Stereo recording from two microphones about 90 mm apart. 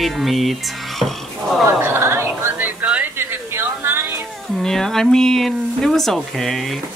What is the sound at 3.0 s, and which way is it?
Music, 25° right (ahead or behind).